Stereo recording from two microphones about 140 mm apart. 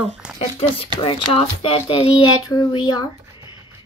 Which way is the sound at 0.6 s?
40° left (ahead or behind).